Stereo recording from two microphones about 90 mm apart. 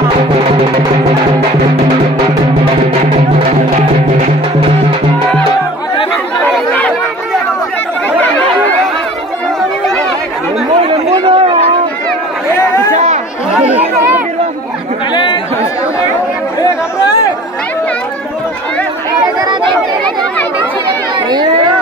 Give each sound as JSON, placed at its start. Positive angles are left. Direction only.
{"t": 10.8, "sound": "chatter", "side_deg": -90}
{"t": 13.5, "sound": "chatter", "side_deg": -15}